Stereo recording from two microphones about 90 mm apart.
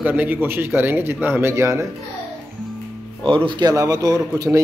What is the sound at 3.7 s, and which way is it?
Speech, 40° right (ahead or behind).